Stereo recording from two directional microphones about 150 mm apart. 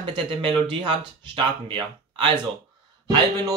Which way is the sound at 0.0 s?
35° right (ahead or behind).